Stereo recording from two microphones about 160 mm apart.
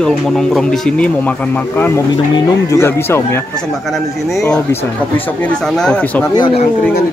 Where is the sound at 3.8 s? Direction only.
Centre (ahead or behind).